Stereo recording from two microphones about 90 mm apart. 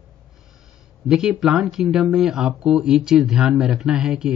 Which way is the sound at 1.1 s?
5° right (ahead or behind).